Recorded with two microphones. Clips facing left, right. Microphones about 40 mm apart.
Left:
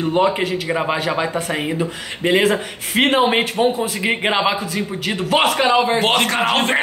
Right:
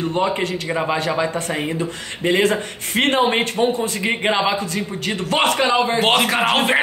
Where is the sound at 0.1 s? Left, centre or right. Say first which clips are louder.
Left 3 dB; centre.